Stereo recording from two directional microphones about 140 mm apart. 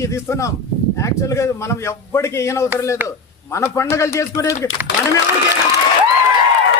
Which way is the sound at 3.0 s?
15° right (ahead or behind).